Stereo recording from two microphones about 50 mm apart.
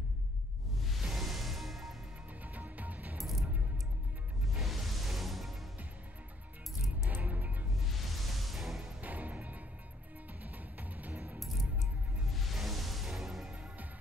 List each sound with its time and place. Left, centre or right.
0.8 s music: centre
2.4 s music: right
3.2 s coin: centre
4.6 s music: centre
7.1 s music: right
7.8 s music: centre
9.0 s music: right
12.3 s music: centre